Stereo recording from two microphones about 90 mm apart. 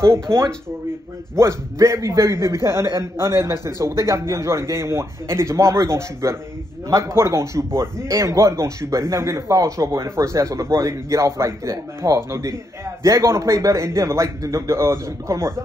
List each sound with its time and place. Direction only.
0.0 s a man's voice: 30° right (ahead or behind)